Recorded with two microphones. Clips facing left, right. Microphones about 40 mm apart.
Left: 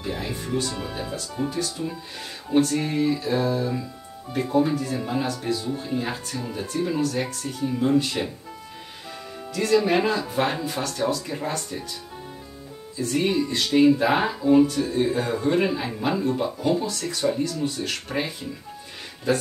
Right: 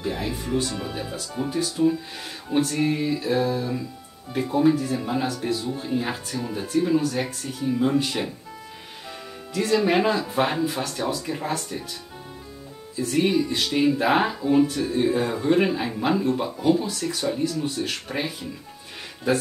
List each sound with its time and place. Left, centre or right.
0.0 s music: centre
1.3 s speech: centre
1.9 s music: centre
5.8 s speech: centre
9.5 s speech: centre
12.9 s speech: centre
16.7 s speech: centre
19.3 s speech: centre